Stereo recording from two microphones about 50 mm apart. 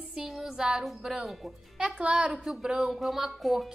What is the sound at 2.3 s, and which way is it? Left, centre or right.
A woman's voice, centre.